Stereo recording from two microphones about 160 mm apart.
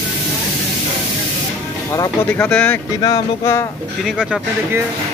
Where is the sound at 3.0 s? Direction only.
20° left (ahead or behind).